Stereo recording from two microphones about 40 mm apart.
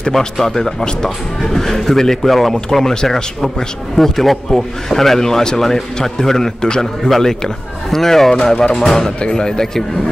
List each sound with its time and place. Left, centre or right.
0.4 s speech: centre